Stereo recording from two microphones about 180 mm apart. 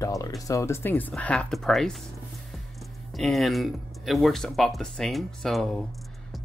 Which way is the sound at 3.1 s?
Centre (ahead or behind).